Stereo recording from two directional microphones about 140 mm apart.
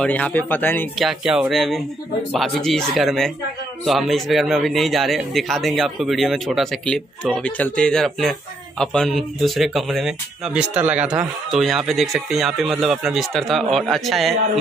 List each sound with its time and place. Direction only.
0.0 s speech: 10° left (ahead or behind)
0.9 s speech: 5° right (ahead or behind)